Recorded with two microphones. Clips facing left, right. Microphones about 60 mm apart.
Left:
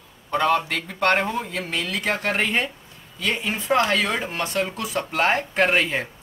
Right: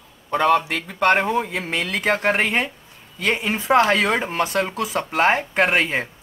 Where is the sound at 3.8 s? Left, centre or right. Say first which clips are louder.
Right 4 dB; right.